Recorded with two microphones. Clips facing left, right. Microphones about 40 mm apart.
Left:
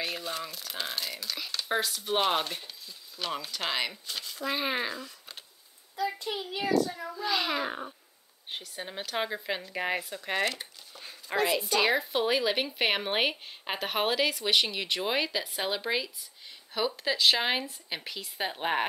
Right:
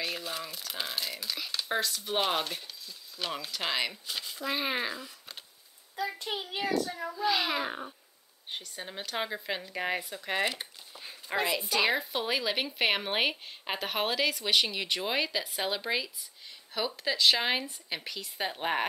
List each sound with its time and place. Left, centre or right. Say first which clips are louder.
0.0 s speech: left 1 dB; centre
6.1 s a child's voice: left 1 dB; right
7.2 s speech: right 1 dB; centre
10.4 s a sound: left 1 dB; centre
11.7 s speech: even; centre